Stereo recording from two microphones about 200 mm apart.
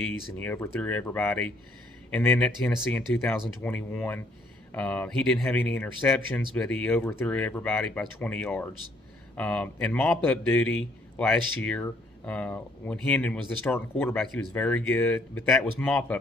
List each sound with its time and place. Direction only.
0.0 s a man's voice: 10° left (ahead or behind)